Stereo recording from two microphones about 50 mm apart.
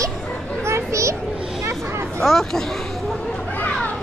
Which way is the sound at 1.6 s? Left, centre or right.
Right.